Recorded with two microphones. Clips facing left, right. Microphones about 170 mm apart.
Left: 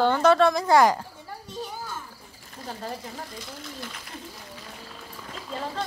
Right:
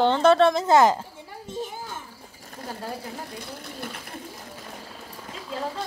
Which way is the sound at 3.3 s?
60° right (ahead or behind).